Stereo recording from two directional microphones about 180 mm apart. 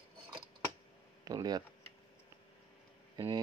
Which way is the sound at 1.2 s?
20° right (ahead or behind).